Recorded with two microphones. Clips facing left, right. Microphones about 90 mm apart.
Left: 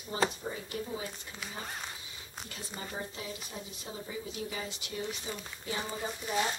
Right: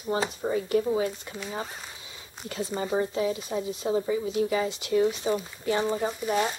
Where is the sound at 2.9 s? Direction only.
85° right.